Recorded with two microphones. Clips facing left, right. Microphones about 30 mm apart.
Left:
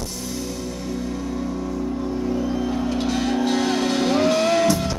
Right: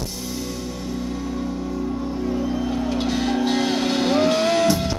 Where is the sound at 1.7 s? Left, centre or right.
Centre.